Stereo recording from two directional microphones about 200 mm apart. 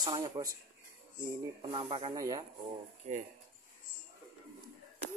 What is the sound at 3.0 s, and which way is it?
Speech, 40° right (ahead or behind).